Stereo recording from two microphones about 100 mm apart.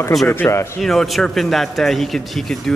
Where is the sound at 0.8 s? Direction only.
Centre (ahead or behind).